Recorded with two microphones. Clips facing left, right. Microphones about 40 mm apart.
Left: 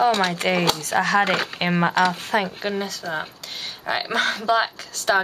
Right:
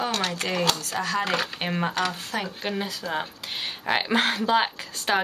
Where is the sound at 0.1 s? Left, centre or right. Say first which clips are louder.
Left 6 dB; left.